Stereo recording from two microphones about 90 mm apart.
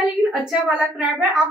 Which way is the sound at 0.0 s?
5° right (ahead or behind).